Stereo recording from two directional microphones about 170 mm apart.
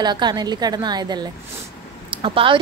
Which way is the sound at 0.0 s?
25° right (ahead or behind).